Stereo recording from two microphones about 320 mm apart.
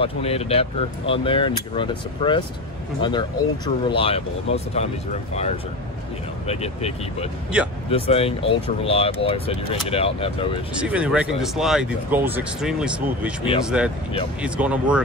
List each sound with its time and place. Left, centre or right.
0.0 s speech: centre
7.5 s speech: centre
7.9 s speech: centre
10.8 s speech: centre